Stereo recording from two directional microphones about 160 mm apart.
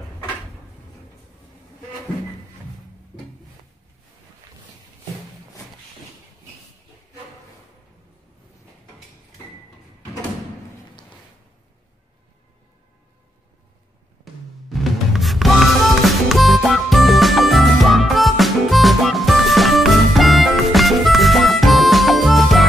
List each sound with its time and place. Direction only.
14.7 s music: centre (ahead or behind)